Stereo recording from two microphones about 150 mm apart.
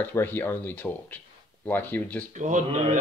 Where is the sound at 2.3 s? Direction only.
55° right (ahead or behind).